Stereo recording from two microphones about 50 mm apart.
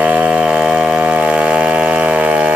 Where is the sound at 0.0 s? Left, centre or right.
Right.